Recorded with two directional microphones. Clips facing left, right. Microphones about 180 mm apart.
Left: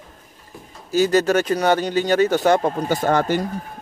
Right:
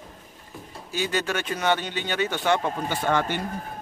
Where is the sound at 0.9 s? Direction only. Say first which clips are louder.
Left 10 dB; 40° left (ahead or behind).